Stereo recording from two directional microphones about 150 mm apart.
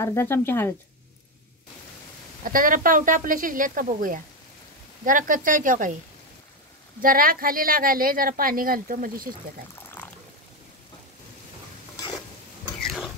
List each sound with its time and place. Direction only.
0.0 s speech: 15° left (ahead or behind)
2.4 s a woman's voice: 65° right (ahead or behind)
7.0 s a woman's voice: 70° right (ahead or behind)
12.8 s pig: centre (ahead or behind)